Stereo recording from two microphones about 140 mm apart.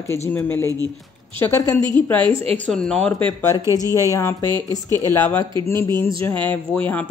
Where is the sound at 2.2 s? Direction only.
40° right (ahead or behind).